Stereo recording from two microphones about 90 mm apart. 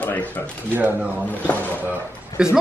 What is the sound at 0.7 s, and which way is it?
Speech, 20° right (ahead or behind).